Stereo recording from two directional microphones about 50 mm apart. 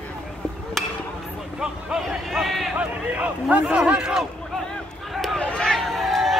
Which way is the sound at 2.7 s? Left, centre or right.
Right.